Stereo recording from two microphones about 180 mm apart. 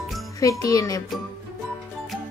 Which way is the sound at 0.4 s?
20° left (ahead or behind).